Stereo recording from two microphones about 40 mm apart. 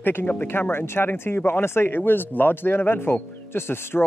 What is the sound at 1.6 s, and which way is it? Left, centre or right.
Speech, left.